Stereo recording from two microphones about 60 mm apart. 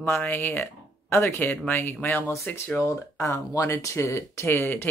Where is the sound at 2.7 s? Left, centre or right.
Left.